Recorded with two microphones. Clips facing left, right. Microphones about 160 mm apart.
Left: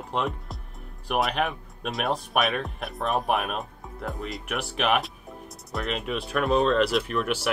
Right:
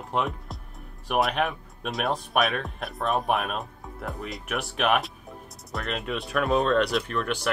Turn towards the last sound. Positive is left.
turn(degrees=5)  # may be behind; listen again after turning